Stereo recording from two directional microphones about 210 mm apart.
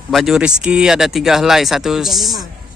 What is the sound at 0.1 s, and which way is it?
Speech, centre (ahead or behind).